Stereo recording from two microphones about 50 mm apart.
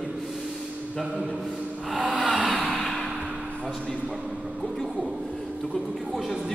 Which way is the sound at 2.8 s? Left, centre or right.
Centre.